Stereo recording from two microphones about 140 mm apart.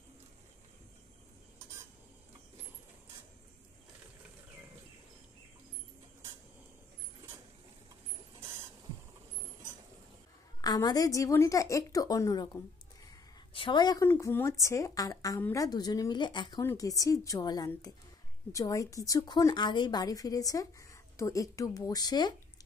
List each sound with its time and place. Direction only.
10.6 s a woman's voice: 30° left (ahead or behind)
13.5 s a woman's voice: 35° left (ahead or behind)
14.0 s a woman's voice: 15° left (ahead or behind)